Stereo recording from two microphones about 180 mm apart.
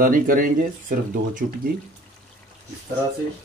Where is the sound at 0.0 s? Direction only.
50° right (ahead or behind).